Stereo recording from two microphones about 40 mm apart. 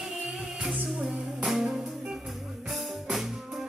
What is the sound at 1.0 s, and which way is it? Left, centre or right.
Music, centre.